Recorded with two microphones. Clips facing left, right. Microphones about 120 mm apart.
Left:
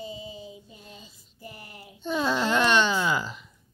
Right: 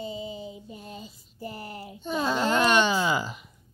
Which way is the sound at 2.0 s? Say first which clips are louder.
Left 1 dB; 5° right (ahead or behind).